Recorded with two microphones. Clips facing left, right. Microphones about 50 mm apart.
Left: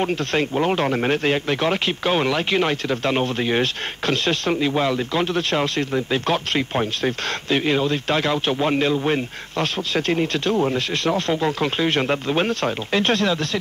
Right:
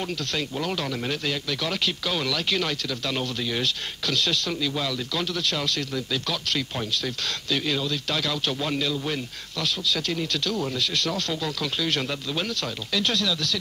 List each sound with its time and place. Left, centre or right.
0.0 s speech: left